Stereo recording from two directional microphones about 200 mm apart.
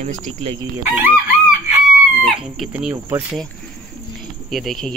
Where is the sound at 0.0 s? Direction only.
35° right (ahead or behind).